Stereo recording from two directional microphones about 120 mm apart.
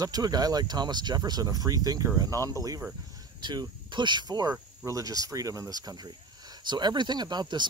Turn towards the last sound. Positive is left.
turn(degrees=-35)  # may be behind; listen again after turning